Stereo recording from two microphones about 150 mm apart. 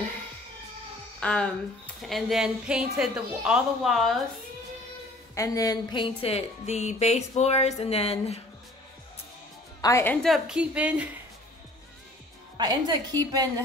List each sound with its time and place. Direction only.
1.2 s a woman's voice: 5° left (ahead or behind)
5.3 s speech: 20° left (ahead or behind); by 8.4 s 45° left (ahead or behind)
9.8 s a woman's voice: 20° left (ahead or behind)
10.2 s a woman's voice: 5° right (ahead or behind)
12.5 s a woman's voice: 30° right (ahead or behind)